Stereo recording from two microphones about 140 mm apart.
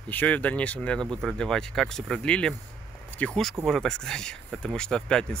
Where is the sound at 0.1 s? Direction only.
10° left (ahead or behind).